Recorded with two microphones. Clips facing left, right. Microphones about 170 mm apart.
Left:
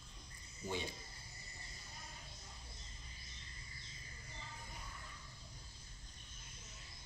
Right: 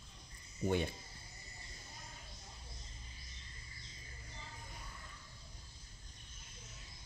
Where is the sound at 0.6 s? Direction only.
60° right (ahead or behind).